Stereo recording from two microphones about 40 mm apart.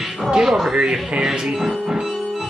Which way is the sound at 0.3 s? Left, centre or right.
Centre.